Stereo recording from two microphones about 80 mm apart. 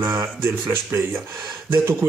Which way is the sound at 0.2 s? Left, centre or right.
Right.